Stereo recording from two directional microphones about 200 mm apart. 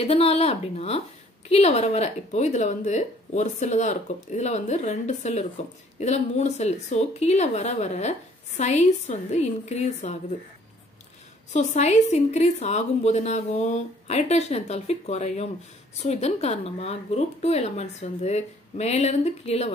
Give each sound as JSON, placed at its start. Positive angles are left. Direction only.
{"t": 0.0, "sound": "speech", "side_deg": 30}
{"t": 11.5, "sound": "speech", "side_deg": 35}